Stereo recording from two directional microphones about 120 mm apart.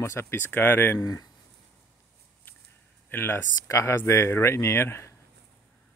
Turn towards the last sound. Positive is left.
turn(degrees=20)  # may be behind; listen again after turning